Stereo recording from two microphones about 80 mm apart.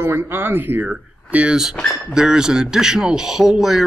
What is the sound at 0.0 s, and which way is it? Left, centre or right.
A man's voice, right.